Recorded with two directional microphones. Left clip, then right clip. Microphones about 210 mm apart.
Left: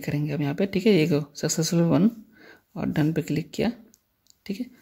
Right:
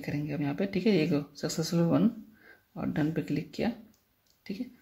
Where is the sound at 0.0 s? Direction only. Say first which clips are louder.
Left 5 dB; 35° left (ahead or behind).